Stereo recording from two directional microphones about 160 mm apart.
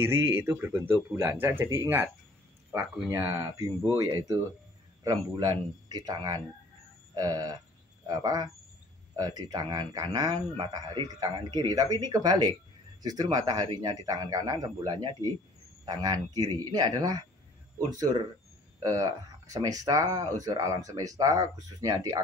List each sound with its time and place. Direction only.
0.1 s speech: 15° right (ahead or behind)
3.1 s speech: 15° right (ahead or behind)